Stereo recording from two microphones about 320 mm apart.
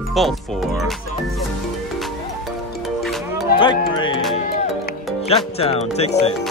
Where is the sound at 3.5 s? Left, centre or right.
Centre.